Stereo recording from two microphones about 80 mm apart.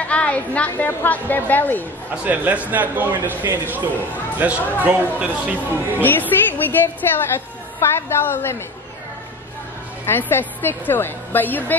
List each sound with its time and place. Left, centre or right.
0.0 s a woman's voice: centre
2.2 s speech: right
6.0 s a woman's voice: left
10.0 s a woman's voice: left